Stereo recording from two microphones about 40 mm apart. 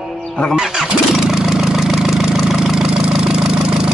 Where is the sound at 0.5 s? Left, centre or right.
Centre.